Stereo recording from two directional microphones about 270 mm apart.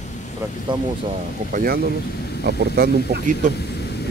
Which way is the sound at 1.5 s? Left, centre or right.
Right.